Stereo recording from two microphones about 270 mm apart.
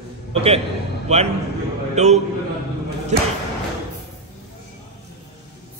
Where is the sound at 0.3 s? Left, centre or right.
Right.